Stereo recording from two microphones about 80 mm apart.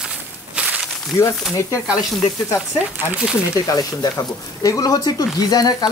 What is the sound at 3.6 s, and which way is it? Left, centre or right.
Speech, left.